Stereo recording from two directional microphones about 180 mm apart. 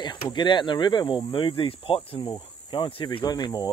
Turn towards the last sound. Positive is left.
turn(degrees=25)  # may be behind; listen again after turning